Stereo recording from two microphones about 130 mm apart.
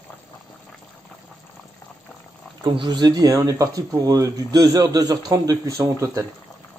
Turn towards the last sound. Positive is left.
turn(degrees=-25)  # may be behind; listen again after turning